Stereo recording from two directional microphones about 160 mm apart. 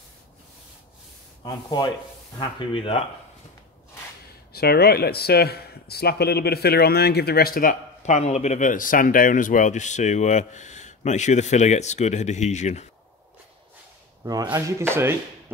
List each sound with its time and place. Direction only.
1.4 s rub: 25° left (ahead or behind)
2.3 s speech: 30° left (ahead or behind)
4.5 s a man's voice: 80° left
8.0 s speech: 45° left (ahead or behind)
14.2 s speech: 25° right (ahead or behind)